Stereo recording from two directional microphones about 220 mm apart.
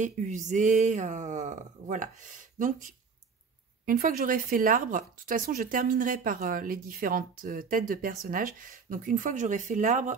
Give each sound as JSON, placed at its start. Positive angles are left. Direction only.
{"t": 0.0, "sound": "speech", "side_deg": -35}